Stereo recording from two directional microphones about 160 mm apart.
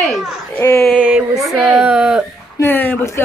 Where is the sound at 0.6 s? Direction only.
15° left (ahead or behind).